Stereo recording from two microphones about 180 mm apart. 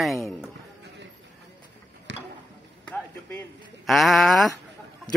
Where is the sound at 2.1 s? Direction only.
80° right.